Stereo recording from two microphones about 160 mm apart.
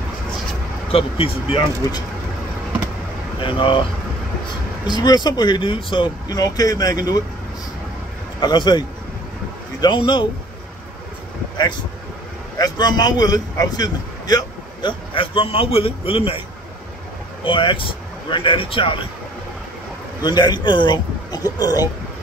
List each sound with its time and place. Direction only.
0.9 s speech: 35° left (ahead or behind)
3.3 s speech: 30° left (ahead or behind)
5.0 s speech: 25° left (ahead or behind)
8.4 s speech: 30° left (ahead or behind)
12.5 s speech: 25° left (ahead or behind)
17.4 s speech: 30° left (ahead or behind)
20.2 s speech: 25° left (ahead or behind)